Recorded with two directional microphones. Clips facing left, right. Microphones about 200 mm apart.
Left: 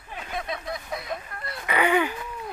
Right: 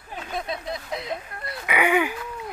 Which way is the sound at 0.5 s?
25° right (ahead or behind).